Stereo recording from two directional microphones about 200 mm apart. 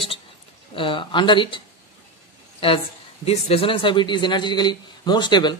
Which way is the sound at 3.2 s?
30° left (ahead or behind).